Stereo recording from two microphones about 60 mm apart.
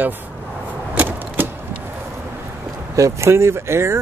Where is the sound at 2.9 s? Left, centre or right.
Right.